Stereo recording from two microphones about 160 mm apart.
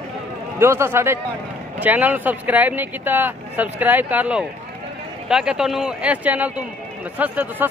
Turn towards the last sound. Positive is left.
turn(degrees=-10)  # may be behind; listen again after turning